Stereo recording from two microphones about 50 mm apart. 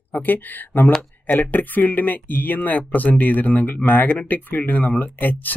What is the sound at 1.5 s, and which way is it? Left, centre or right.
Speech, left.